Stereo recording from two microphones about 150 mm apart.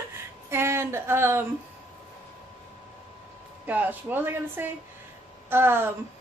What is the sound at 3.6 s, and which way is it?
A woman's voice, 10° right (ahead or behind).